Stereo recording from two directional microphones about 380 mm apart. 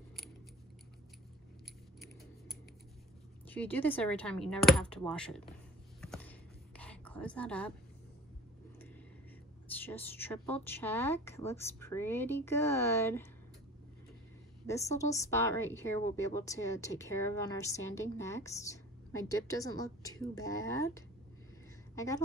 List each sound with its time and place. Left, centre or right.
3.4 s a woman's voice: centre
5.9 s a sound: centre
9.8 s a woman's voice: centre
14.7 s a woman's voice: centre